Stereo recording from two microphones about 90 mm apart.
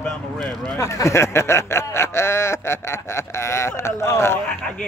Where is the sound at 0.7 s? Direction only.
35° left (ahead or behind).